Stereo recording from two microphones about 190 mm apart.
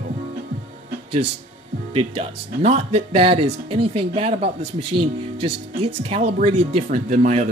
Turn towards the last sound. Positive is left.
turn(degrees=-35)  # may be behind; listen again after turning